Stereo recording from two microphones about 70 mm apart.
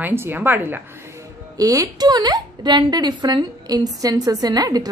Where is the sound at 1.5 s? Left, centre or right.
Right.